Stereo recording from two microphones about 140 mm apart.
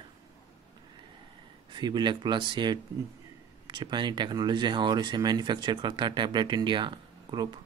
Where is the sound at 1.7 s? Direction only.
30° right (ahead or behind).